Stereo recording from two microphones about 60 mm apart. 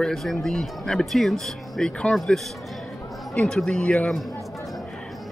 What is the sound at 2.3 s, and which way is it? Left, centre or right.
Speech, centre.